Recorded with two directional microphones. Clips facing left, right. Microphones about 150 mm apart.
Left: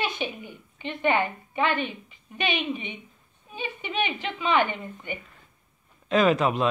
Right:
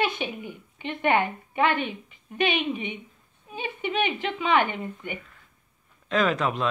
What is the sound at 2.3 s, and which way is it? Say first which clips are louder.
Speech: right 3 dB; 50° right (ahead or behind).